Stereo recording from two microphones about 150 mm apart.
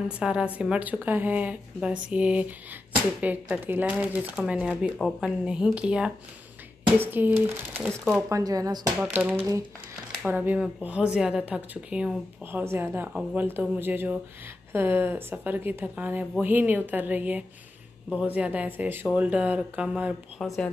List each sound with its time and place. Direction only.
0.2 s speech: 5° right (ahead or behind)
4.9 s speech: 5° left (ahead or behind)
5.4 s speech: 5° right (ahead or behind)
8.3 s speech: 25° right (ahead or behind)
9.0 s speech: 10° right (ahead or behind)